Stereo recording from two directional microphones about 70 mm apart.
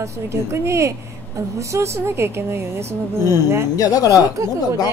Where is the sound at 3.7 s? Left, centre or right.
Left.